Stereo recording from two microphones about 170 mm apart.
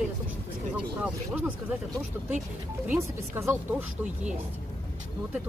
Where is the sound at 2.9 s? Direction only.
15° right (ahead or behind).